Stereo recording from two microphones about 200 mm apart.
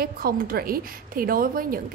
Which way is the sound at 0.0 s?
45° right (ahead or behind).